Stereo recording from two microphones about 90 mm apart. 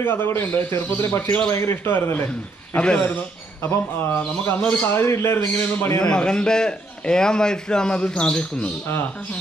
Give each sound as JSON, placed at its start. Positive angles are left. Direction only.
{"t": 0.0, "sound": "a man's voice", "side_deg": 25}
{"t": 2.7, "sound": "a man's voice", "side_deg": 15}
{"t": 3.6, "sound": "a man's voice", "side_deg": 25}
{"t": 4.6, "sound": "a man's voice", "side_deg": 10}
{"t": 4.8, "sound": "a man's voice", "side_deg": 30}
{"t": 5.9, "sound": "a man's voice", "side_deg": 10}